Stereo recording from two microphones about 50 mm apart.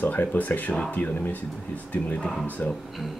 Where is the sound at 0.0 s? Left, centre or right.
Left.